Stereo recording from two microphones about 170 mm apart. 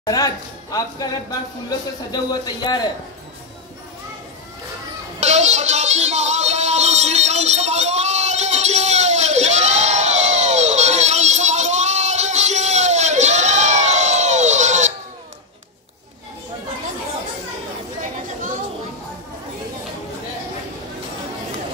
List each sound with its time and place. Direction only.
0.0 s a man's voice: 20° left (ahead or behind)
2.1 s speech: 25° left (ahead or behind)
5.2 s music: 40° right (ahead or behind)